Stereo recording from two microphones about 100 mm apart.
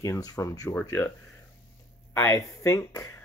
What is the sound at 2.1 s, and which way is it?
Speech, 30° left (ahead or behind).